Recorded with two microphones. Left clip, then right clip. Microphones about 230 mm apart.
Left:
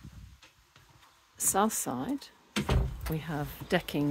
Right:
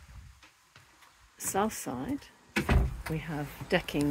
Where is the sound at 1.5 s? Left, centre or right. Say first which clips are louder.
Left 2 dB; left.